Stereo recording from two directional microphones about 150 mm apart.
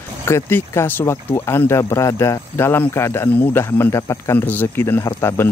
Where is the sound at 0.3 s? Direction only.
15° left (ahead or behind).